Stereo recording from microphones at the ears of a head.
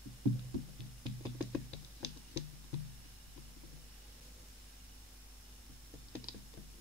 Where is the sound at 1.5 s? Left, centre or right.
Left.